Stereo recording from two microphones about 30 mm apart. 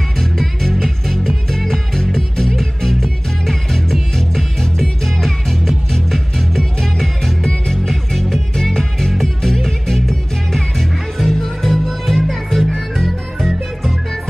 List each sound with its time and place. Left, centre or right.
0.2 s music: centre